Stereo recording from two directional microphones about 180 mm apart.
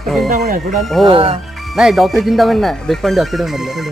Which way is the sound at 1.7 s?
Centre (ahead or behind).